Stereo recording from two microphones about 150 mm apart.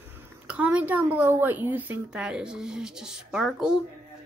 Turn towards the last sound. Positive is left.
turn(degrees=-5)  # may be behind; listen again after turning